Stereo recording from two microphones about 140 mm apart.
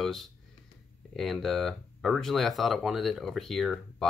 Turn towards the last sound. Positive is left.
turn(degrees=0)  # may be behind; listen again after turning